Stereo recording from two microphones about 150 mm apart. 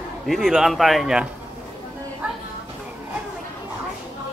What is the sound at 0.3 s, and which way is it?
A man's voice, centre (ahead or behind).